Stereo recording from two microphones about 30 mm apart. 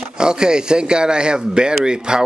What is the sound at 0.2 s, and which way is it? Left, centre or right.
Speech, right.